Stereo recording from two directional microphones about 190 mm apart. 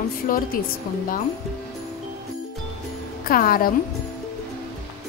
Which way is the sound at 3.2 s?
50° left (ahead or behind).